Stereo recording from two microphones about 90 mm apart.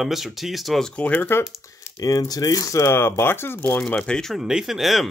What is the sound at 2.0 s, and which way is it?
Speech, 45° left (ahead or behind).